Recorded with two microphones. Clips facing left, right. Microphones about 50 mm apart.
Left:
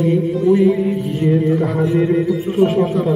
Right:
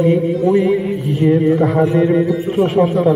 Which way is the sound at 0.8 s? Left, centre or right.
Centre.